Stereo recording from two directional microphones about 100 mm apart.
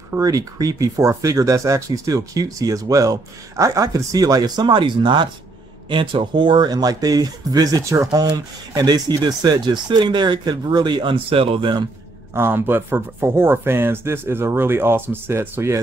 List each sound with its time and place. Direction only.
0.1 s speech: 35° right (ahead or behind); by 11.8 s 60° right (ahead or behind)
12.4 s speech: 20° right (ahead or behind)